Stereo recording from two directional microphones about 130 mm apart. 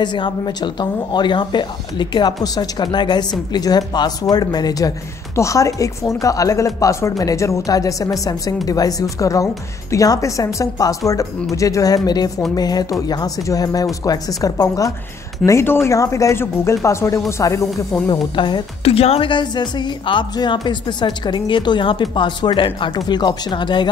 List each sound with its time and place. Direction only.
0.0 s a woman's voice: 35° left (ahead or behind)
18.0 s a woman's voice: 35° left (ahead or behind)